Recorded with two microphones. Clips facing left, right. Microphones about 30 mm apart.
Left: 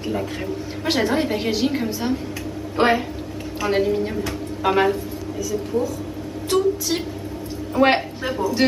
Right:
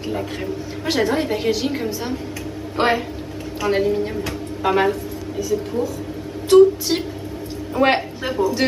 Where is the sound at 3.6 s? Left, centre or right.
Centre.